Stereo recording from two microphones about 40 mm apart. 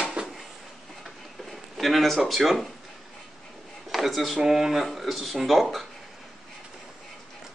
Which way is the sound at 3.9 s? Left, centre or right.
Centre.